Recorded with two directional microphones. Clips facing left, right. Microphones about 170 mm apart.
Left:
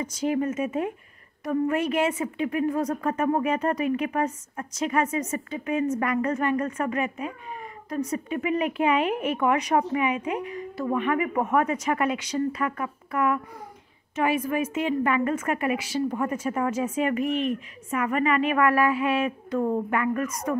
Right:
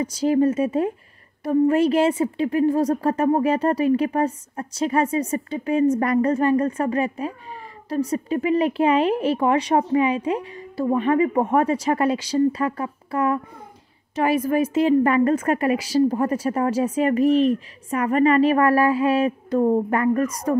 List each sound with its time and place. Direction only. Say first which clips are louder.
0.0 s a woman's voice: right 7 dB; 35° right (ahead or behind)